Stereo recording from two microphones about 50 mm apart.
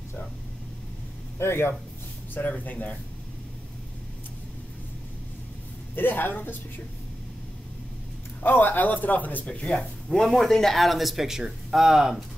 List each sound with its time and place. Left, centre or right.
1.4 s speech: left
2.3 s a man's voice: left
5.9 s a man's voice: left
8.4 s a man's voice: left
9.5 s speech: centre
10.0 s speech: centre